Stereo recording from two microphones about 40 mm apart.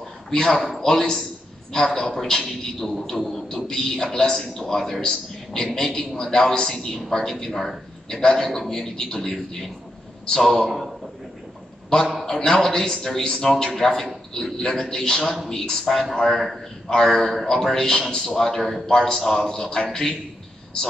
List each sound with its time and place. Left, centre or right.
0.3 s a man's voice: centre
0.6 s a man's voice: centre
12.3 s a man's voice: centre
15.9 s a man's voice: centre
18.9 s a man's voice: centre